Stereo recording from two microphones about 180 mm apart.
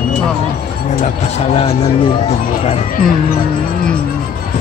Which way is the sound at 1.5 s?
30° left (ahead or behind).